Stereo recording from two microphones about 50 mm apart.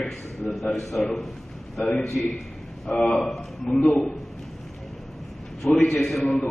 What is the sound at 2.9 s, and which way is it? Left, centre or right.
Speech, left.